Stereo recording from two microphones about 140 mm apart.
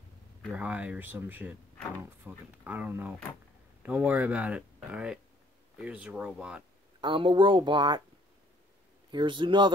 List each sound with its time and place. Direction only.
0.5 s speech: 10° right (ahead or behind)
7.0 s a woman's voice: 35° right (ahead or behind)
9.1 s a woman's voice: 35° right (ahead or behind)